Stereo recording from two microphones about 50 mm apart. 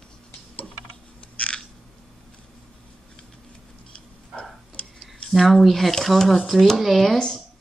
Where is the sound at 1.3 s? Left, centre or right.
Left.